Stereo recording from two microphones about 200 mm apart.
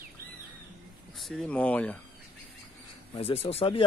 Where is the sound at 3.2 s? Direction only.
30° left (ahead or behind).